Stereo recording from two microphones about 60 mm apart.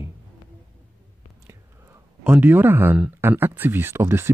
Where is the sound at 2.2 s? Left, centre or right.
Right.